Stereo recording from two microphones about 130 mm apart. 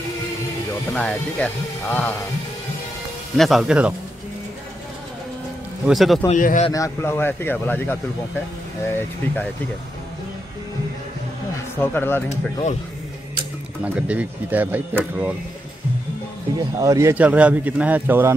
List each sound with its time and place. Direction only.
0.9 s speech: 10° left (ahead or behind)
3.3 s speech: centre (ahead or behind)
5.9 s speech: centre (ahead or behind)
6.3 s speech: 75° left (ahead or behind)
6.7 s speech: 20° left (ahead or behind)
11.8 s speech: 15° left (ahead or behind)
13.9 s speech: 10° right (ahead or behind)
16.7 s speech: 25° right (ahead or behind)
17.1 s speech: 10° right (ahead or behind)